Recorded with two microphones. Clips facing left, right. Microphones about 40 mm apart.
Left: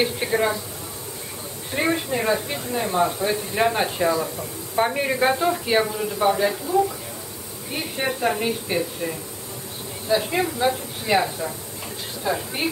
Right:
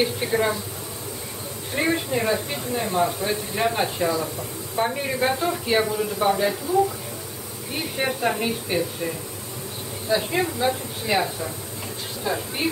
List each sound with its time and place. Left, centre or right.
0.0 s speech: centre
1.8 s speech: centre
10.1 s speech: centre